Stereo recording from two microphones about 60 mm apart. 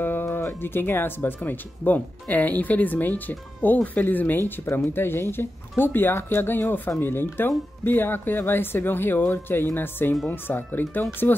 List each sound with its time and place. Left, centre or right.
0.0 s speech: left